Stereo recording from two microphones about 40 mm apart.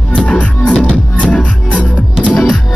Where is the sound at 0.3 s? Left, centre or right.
Left.